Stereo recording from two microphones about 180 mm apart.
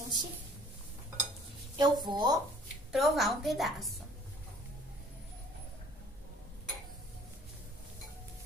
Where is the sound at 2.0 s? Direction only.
25° right (ahead or behind).